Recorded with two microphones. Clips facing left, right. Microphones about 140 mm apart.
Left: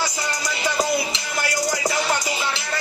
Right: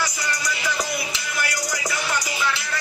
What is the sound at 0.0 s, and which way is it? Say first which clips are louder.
Music: left 1 dB; 25° left (ahead or behind).